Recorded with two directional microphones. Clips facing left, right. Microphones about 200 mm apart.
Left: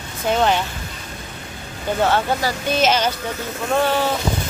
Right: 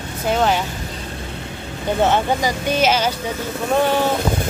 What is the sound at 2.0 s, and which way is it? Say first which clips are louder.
Speech: right 1 dB; 15° right (ahead or behind).